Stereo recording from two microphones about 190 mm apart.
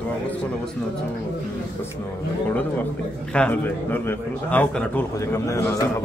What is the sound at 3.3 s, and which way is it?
A man's voice, 10° left (ahead or behind).